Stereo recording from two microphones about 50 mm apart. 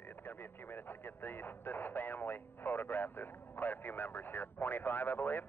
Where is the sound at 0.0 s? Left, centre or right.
Left.